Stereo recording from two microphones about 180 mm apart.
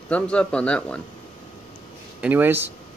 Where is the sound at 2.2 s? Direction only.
10° right (ahead or behind).